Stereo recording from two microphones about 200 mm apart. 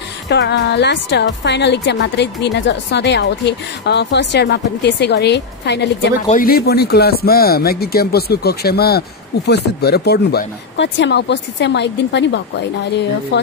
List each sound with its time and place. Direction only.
0.3 s a woman's voice: 60° left (ahead or behind)
6.2 s a woman's voice: 45° left (ahead or behind)